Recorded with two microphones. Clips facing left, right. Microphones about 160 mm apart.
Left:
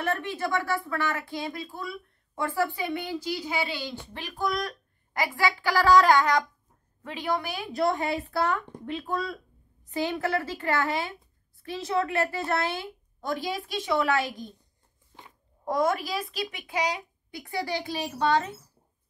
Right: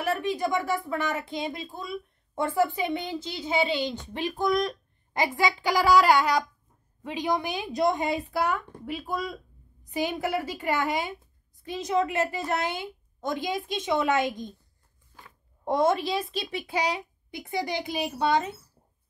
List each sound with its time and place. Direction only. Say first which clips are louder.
0.2 s a woman's voice: right 2 dB; 15° right (ahead or behind)
15.1 s a sound: left 1 dB; 25° left (ahead or behind)
15.6 s a woman's voice: right 2 dB; 25° right (ahead or behind)